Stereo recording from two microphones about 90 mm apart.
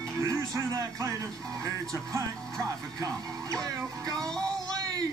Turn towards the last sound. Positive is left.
turn(degrees=-45)  # may be behind; listen again after turning